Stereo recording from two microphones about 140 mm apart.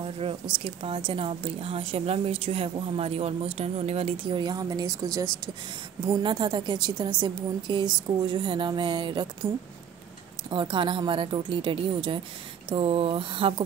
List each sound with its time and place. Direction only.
0.0 s a woman's voice: 45° right (ahead or behind)
4.4 s a woman's voice: 30° right (ahead or behind)
10.5 s a woman's voice: 35° right (ahead or behind)